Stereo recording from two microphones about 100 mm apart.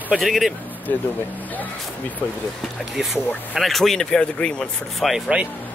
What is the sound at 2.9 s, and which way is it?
Speech, 5° right (ahead or behind).